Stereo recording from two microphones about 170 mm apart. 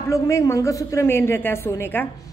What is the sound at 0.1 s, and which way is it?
A woman's voice, 15° left (ahead or behind).